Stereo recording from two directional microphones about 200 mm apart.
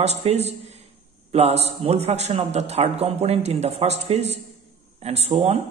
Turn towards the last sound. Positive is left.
turn(degrees=-30)  # may be behind; listen again after turning